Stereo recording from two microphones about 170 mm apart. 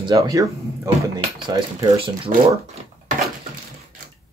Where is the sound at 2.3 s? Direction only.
50° right (ahead or behind).